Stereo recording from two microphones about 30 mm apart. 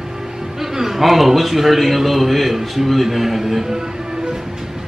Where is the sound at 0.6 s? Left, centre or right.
Centre.